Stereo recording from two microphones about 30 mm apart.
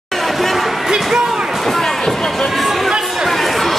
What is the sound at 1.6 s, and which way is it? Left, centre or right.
Music, centre.